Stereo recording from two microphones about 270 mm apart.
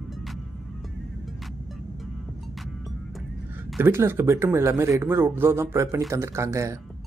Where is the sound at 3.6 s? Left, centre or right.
Centre.